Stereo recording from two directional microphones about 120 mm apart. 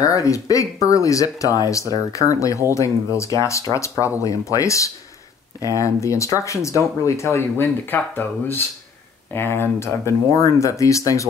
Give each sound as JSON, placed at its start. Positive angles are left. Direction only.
{"t": 0.0, "sound": "speech", "side_deg": 30}